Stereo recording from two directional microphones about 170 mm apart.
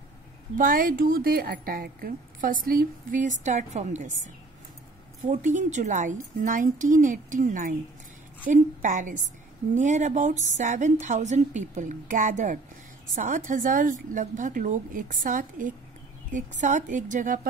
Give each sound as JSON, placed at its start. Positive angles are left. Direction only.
{"t": 0.6, "sound": "a woman's voice", "side_deg": -55}